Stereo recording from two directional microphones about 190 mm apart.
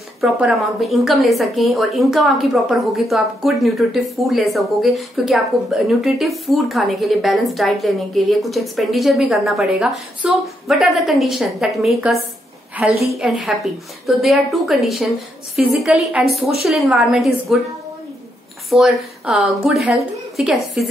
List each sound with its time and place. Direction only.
0.2 s a woman's voice: centre (ahead or behind)
18.7 s a woman's voice: centre (ahead or behind)